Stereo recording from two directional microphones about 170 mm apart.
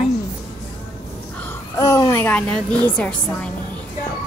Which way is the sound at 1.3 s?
10° left (ahead or behind).